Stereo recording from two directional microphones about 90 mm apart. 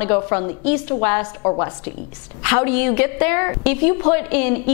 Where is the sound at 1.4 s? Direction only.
30° left (ahead or behind).